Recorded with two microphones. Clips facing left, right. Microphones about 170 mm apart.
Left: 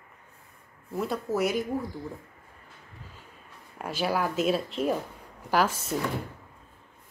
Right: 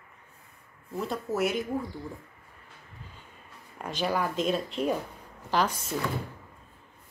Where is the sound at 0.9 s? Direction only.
Centre (ahead or behind).